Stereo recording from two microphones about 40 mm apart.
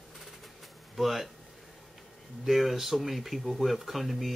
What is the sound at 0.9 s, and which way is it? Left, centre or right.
Speech, centre.